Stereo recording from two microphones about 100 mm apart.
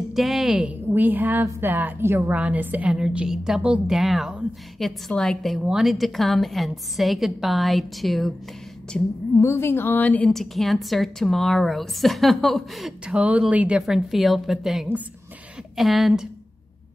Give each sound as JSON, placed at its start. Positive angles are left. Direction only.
{"t": 0.1, "sound": "a woman's voice", "side_deg": 0}
{"t": 9.4, "sound": "a woman's voice", "side_deg": 25}
{"t": 10.3, "sound": "speech", "side_deg": 0}